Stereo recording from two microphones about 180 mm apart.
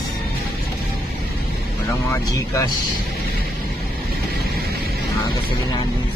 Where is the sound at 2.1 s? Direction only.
15° left (ahead or behind).